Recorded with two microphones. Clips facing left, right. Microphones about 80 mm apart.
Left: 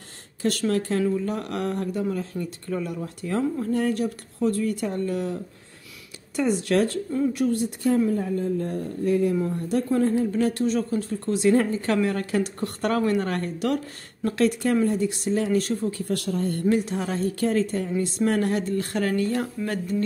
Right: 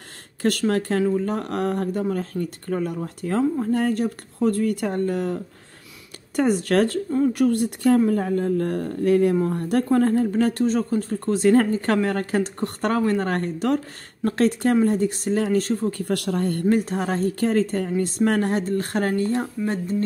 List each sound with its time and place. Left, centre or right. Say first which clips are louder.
0.4 s speech: right 2 dB; right
7.3 s speech: right 4 dB; right
9.4 s speech: right 3 dB; right
16.0 s speech: right 3 dB; right
16.6 s speech: right 2 dB; right